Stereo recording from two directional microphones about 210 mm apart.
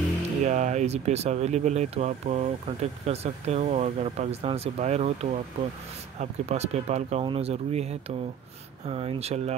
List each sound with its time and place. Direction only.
0.5 s speech: 35° right (ahead or behind)